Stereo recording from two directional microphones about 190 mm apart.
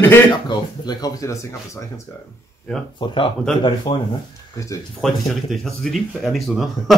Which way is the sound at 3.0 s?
25° left (ahead or behind).